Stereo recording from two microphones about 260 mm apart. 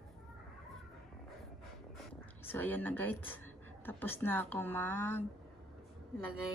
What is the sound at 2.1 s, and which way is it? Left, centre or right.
Speech, centre.